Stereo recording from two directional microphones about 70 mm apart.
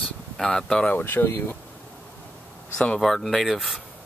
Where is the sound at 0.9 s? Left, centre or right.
Left.